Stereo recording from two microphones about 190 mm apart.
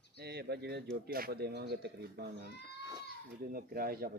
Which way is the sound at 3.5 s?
50° right (ahead or behind).